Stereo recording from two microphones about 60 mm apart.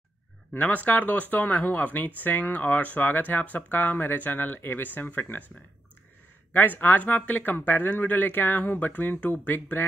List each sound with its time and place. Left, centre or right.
0.6 s speech: left
6.8 s speech: left